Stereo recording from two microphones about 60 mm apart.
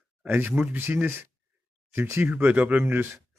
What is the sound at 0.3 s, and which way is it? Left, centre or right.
Speech, right.